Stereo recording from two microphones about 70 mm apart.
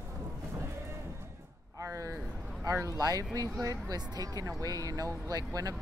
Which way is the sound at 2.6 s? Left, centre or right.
Right.